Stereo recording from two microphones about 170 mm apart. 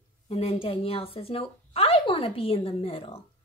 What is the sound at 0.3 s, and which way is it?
Speech, 35° left (ahead or behind).